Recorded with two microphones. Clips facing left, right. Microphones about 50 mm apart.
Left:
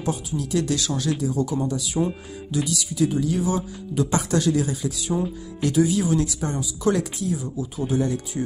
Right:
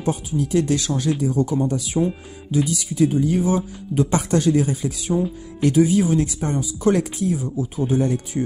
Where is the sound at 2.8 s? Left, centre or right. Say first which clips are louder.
Right 4 dB; right.